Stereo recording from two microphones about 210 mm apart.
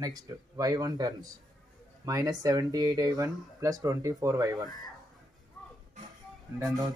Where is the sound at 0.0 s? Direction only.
20° right (ahead or behind).